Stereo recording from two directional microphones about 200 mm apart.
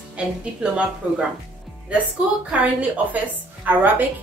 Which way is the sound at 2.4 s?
5° right (ahead or behind).